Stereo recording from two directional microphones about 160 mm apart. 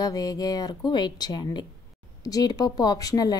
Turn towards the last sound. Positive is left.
turn(degrees=25)  # may be behind; listen again after turning